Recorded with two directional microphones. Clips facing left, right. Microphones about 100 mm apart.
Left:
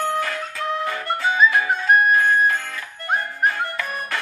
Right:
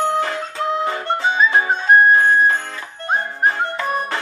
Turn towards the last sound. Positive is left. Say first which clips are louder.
# right 6 dB
turn(degrees=-30)  # may be behind; listen again after turning